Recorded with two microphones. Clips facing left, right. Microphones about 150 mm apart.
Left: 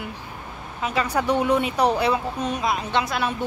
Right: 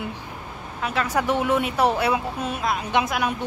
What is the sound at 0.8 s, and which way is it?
Speech, centre (ahead or behind).